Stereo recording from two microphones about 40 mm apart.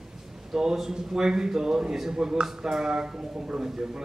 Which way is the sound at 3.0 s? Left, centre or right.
Right.